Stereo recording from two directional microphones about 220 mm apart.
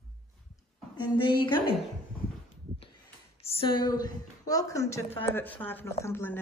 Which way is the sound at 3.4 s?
20° left (ahead or behind).